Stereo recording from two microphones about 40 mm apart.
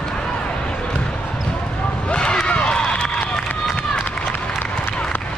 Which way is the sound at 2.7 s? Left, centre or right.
Left.